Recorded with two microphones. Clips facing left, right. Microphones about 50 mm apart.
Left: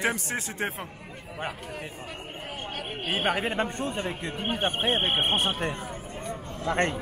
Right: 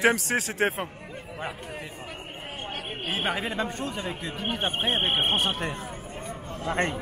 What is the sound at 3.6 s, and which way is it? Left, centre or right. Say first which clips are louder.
Speech: left 1 dB; left.